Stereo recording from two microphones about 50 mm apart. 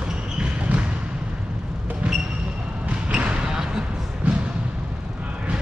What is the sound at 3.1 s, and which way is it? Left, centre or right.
Basketball bounce, right.